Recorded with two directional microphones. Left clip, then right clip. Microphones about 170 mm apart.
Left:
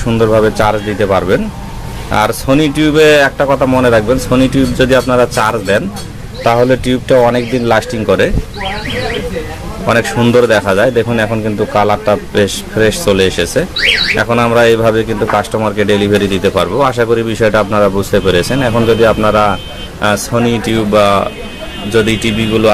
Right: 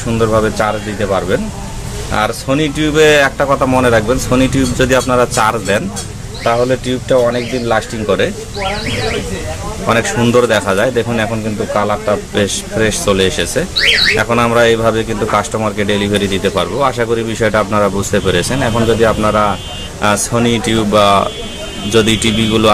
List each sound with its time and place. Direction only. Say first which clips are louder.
0.1 s speech: left 3 dB; 20° left (ahead or behind)
6.4 s speech: left 3 dB; 30° left (ahead or behind)
9.8 s speech: left 2 dB; 15° left (ahead or behind)
11.7 s speech: left 3 dB; 30° left (ahead or behind)
20.0 s speech: left 1 dB; 5° left (ahead or behind)